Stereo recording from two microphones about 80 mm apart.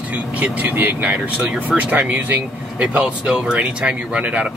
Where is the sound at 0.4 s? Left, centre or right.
Right.